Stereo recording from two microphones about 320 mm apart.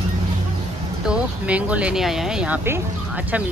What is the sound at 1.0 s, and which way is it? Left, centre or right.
Speech, centre.